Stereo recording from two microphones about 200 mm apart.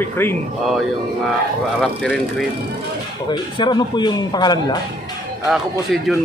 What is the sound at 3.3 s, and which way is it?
A man's voice, 20° left (ahead or behind).